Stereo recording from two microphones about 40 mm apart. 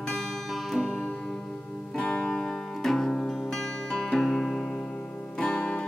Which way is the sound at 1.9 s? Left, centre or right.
Left.